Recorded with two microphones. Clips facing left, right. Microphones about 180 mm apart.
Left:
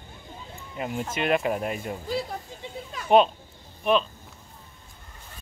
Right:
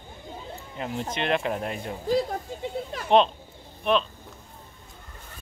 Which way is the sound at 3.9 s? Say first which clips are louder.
Left 1 dB; 5° left (ahead or behind).